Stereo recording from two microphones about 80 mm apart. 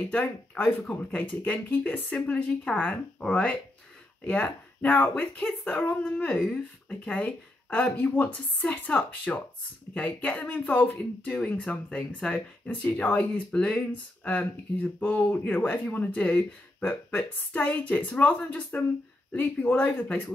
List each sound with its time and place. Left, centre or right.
0.1 s speech: centre